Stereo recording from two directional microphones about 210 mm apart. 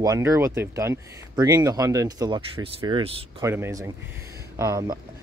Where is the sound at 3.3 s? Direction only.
10° right (ahead or behind).